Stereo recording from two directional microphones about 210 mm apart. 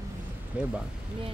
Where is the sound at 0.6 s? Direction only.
5° right (ahead or behind).